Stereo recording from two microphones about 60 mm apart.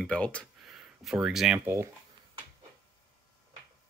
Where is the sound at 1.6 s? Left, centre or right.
Right.